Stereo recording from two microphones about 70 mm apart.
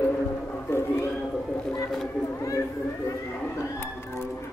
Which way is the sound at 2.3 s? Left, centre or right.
Left.